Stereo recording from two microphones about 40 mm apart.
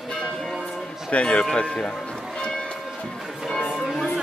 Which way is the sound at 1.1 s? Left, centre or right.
Left.